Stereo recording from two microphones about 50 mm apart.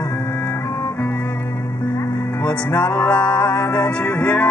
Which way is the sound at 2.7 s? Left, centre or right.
Left.